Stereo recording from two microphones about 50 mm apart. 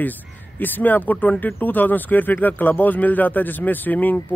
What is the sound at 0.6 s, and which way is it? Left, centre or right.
Speech, left.